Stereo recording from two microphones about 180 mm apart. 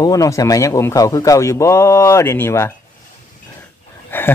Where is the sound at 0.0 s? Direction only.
20° left (ahead or behind).